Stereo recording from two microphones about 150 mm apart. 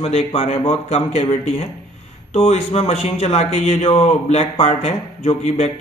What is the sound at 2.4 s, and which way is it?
Speech, 45° left (ahead or behind).